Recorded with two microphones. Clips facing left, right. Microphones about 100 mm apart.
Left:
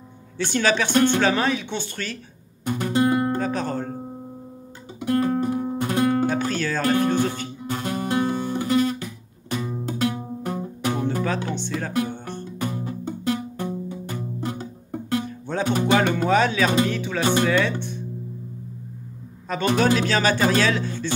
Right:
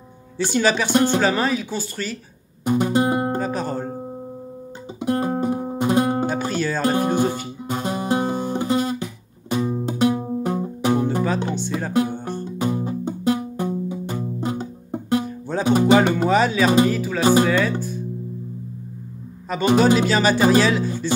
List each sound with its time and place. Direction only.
0.4 s speech: 10° right (ahead or behind)
1.1 s music: 5° right (ahead or behind)
2.6 s music: 20° right (ahead or behind)
3.3 s music: 10° right (ahead or behind)
5.0 s music: 25° right (ahead or behind)
6.3 s music: 10° right (ahead or behind)
15.2 s music: 10° right (ahead or behind)
19.5 s speech: 10° right (ahead or behind)